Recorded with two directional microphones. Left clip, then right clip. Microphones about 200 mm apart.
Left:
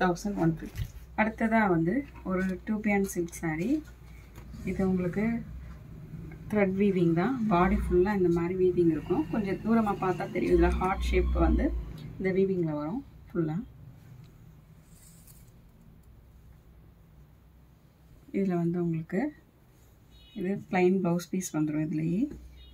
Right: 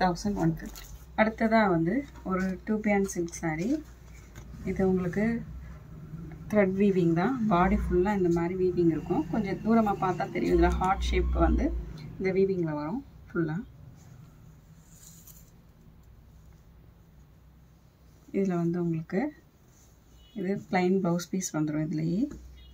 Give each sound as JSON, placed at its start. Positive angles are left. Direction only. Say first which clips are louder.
{"t": 0.0, "sound": "speech", "louder": "right 1 dB", "side_deg": -15}
{"t": 1.1, "sound": "speech", "louder": "right 3 dB", "side_deg": 0}
{"t": 4.6, "sound": "speech", "louder": "right 3 dB", "side_deg": -5}
{"t": 6.4, "sound": "speech", "louder": "right 2 dB", "side_deg": -5}
{"t": 12.2, "sound": "speech", "louder": "right 1 dB", "side_deg": 20}
{"t": 18.3, "sound": "speech", "louder": "right 1 dB", "side_deg": 5}
{"t": 20.3, "sound": "speech", "louder": "even", "side_deg": 5}